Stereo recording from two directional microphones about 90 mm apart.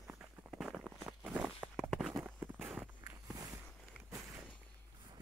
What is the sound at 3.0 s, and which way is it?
Walk, 40° right (ahead or behind).